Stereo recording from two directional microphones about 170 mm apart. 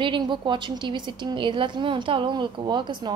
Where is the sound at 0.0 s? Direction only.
30° right (ahead or behind).